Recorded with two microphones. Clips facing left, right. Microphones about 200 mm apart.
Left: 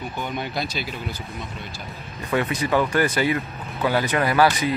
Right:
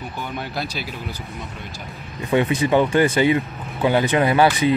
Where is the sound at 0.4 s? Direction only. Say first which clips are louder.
Right 1 dB; 5° right (ahead or behind).